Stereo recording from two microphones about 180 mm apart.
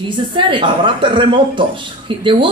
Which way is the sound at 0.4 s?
25° right (ahead or behind).